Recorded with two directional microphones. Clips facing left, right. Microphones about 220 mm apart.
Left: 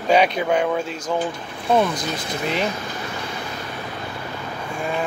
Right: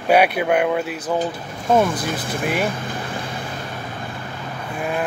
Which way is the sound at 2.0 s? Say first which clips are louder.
Right 2 dB; 50° right (ahead or behind).